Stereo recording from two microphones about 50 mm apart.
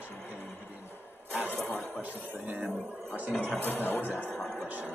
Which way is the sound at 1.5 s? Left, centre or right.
Left.